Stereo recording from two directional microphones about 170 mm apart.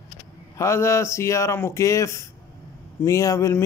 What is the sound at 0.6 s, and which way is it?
A man's voice, 15° left (ahead or behind).